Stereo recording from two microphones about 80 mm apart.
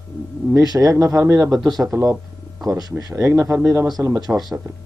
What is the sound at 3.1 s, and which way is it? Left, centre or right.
Speech, right.